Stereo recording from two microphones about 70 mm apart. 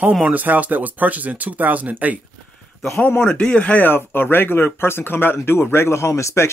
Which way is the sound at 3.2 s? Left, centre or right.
Centre.